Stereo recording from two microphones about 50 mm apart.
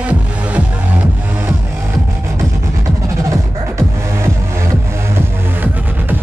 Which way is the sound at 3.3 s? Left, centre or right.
Right.